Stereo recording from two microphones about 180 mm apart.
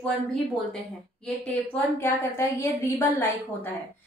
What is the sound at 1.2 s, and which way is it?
A woman's voice, 5° left (ahead or behind).